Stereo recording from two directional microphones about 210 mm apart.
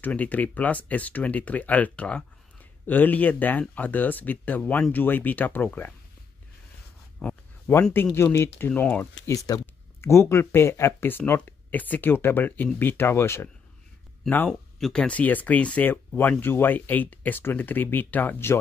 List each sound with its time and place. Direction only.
0.0 s speech: 5° left (ahead or behind)
7.2 s speech: 5° left (ahead or behind)